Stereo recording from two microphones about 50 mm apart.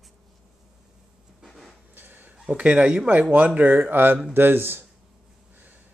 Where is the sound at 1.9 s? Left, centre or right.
Right.